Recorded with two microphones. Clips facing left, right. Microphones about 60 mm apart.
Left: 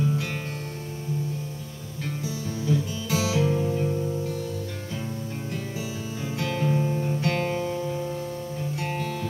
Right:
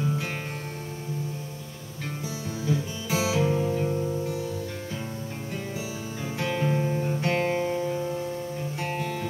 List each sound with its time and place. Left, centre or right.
2.6 s music: right
6.4 s guitar: right
7.2 s music: right
7.9 s music: centre
8.7 s music: right